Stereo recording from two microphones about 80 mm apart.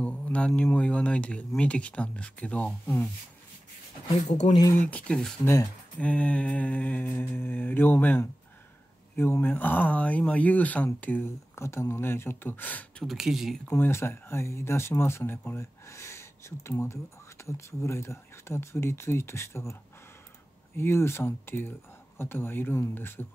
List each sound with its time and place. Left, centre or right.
0.0 s a sound: centre
0.7 s speech: centre
4.7 s speech: centre
5.4 s speech: left
5.9 s mantra: centre
11.2 s mantra: left
13.0 s speech: centre
13.7 s speech: left
15.9 s speech: left
20.7 s mantra: left